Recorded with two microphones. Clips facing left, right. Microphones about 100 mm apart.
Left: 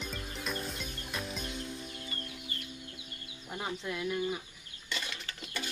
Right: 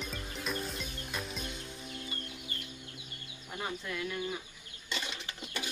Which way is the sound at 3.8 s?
20° left (ahead or behind).